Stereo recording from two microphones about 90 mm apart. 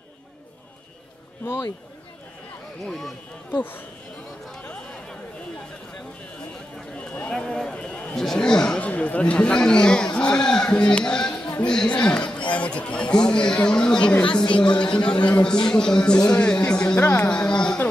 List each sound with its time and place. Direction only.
1.4 s speech: 30° left (ahead or behind)
2.8 s speech: centre (ahead or behind)
3.5 s speech: 20° left (ahead or behind)
7.0 s a man's voice: 15° left (ahead or behind)